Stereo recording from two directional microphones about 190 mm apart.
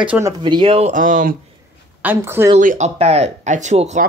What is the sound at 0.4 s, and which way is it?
Speech, 25° right (ahead or behind).